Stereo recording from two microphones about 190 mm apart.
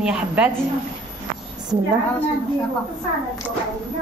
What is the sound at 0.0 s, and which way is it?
Speech, 5° right (ahead or behind).